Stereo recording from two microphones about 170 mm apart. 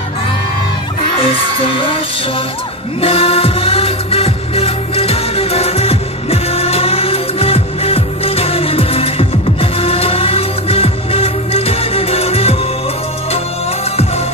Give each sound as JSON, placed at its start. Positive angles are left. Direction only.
{"t": 1.2, "sound": "speech", "side_deg": 30}
{"t": 3.0, "sound": "music", "side_deg": 35}